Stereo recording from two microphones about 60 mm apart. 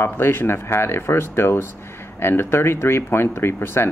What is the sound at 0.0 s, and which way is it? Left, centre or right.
Speech, left.